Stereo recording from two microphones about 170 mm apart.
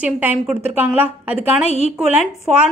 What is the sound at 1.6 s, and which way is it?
Speech, 40° right (ahead or behind).